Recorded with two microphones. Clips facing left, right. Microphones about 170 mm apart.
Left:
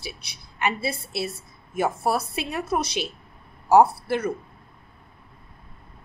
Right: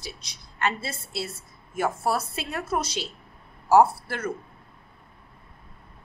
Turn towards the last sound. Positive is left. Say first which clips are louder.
# left 2 dB
turn(degrees=15)  # may be behind; listen again after turning